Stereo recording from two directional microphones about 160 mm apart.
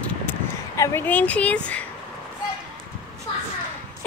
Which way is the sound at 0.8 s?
15° left (ahead or behind).